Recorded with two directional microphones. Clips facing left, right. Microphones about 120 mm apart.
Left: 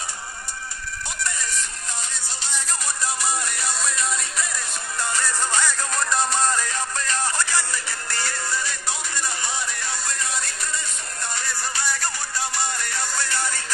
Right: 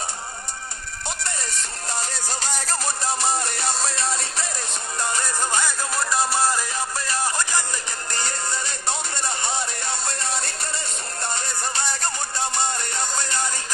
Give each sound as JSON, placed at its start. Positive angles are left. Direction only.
{"t": 1.2, "sound": "music", "side_deg": -30}
{"t": 5.1, "sound": "music", "side_deg": -20}